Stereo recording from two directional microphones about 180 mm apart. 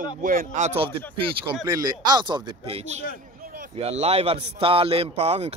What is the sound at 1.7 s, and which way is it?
A man's voice, 25° right (ahead or behind).